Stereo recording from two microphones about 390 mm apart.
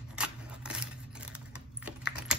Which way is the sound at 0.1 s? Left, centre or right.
Centre.